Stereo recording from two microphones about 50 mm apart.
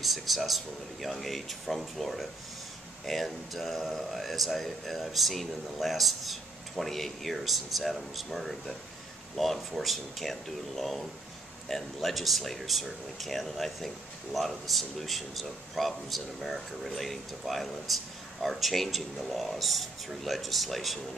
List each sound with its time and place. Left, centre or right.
0.0 s speech: centre